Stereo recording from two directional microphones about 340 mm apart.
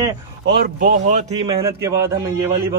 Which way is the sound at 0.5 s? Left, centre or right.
Right.